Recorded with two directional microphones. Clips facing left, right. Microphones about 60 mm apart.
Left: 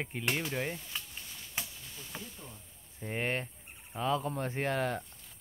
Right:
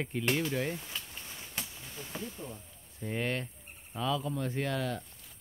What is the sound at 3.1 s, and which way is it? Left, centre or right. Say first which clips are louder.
Cricket: even; left.